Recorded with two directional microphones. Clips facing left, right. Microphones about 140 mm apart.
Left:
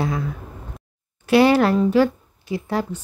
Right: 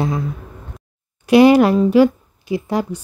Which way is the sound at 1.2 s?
15° right (ahead or behind).